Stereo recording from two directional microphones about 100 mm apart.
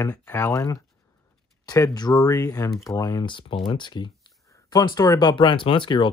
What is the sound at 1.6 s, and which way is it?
Speech, 35° left (ahead or behind).